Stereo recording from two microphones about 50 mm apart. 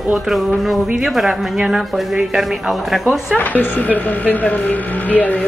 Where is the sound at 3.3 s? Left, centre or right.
Left.